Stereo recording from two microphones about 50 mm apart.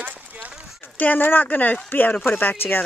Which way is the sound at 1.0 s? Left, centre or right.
Left.